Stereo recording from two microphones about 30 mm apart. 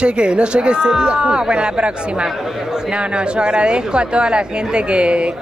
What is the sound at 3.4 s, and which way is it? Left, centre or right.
Speech, right.